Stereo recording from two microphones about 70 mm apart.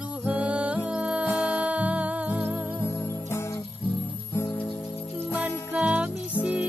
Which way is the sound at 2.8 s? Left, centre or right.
Left.